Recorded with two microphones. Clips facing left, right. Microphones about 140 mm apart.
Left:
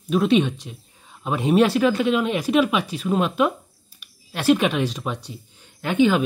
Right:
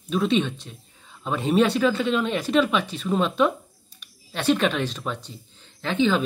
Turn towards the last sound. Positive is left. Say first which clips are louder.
# left 3 dB
turn(degrees=10)  # may be behind; listen again after turning